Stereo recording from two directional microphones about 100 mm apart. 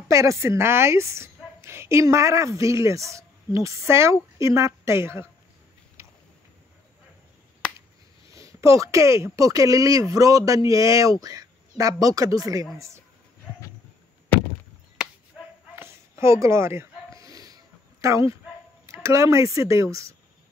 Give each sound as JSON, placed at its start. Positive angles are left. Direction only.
{"t": 0.1, "sound": "a woman's voice", "side_deg": -30}
{"t": 8.3, "sound": "a woman's voice", "side_deg": -35}
{"t": 15.8, "sound": "a sound", "side_deg": -25}
{"t": 18.0, "sound": "speech", "side_deg": -30}